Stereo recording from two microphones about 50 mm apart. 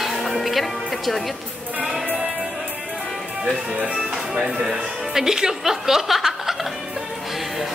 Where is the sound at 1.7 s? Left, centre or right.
Right.